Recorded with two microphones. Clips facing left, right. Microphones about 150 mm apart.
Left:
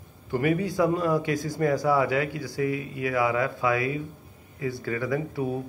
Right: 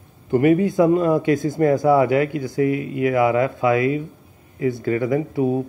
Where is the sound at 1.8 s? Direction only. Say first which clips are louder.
Right 7 dB; 25° right (ahead or behind).